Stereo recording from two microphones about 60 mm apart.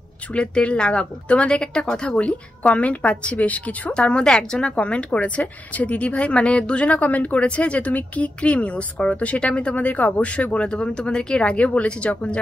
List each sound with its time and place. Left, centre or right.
0.3 s a woman's voice: centre